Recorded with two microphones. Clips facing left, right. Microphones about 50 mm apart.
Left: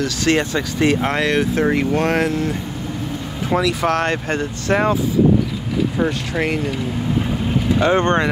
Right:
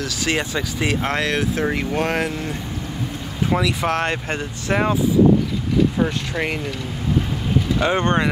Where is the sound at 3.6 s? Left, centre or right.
Centre.